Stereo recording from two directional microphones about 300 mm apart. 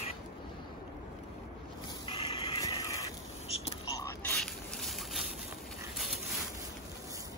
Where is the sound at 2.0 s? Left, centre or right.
Centre.